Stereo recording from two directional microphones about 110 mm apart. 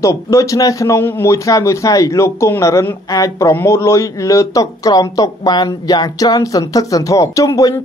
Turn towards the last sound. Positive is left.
turn(degrees=35)  # may be behind; listen again after turning